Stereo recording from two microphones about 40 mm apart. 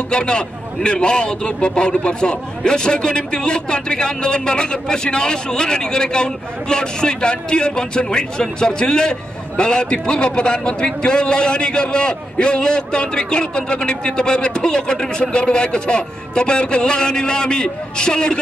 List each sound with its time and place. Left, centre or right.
0.1 s a man's voice: left